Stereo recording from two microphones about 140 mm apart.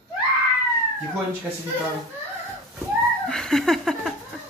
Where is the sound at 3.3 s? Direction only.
5° left (ahead or behind).